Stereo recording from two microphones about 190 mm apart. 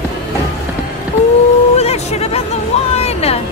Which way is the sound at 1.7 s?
35° left (ahead or behind).